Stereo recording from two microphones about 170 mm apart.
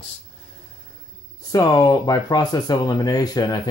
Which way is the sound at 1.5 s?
20° left (ahead or behind).